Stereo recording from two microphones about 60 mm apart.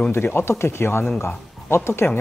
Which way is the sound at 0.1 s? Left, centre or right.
Left.